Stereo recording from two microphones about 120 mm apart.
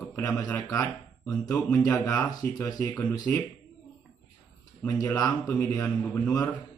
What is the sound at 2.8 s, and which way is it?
Speech, 30° left (ahead or behind).